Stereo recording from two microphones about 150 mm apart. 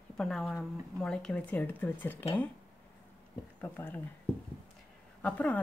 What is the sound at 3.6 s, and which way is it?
Speech, 10° left (ahead or behind).